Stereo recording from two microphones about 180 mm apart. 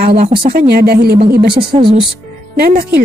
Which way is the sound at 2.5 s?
55° right (ahead or behind).